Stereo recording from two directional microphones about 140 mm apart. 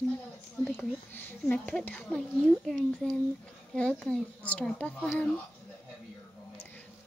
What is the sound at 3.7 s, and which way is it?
Speech, 5° left (ahead or behind).